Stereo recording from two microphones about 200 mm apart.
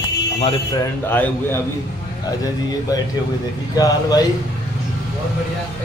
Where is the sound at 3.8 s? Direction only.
20° left (ahead or behind).